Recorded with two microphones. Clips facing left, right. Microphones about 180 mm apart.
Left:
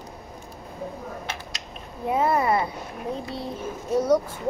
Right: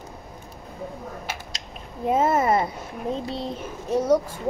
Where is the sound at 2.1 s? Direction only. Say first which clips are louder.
Right 1 dB; 25° right (ahead or behind).